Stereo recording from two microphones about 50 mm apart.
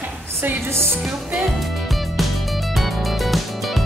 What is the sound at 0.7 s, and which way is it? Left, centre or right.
Music, right.